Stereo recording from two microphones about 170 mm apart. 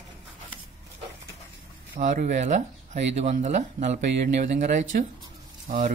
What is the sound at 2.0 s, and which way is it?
Speech, 45° right (ahead or behind).